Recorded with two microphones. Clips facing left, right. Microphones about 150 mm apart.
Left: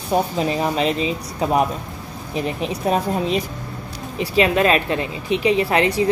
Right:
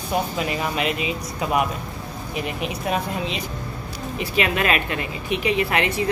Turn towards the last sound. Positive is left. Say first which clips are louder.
# left 4 dB
turn(degrees=30)  # may be behind; listen again after turning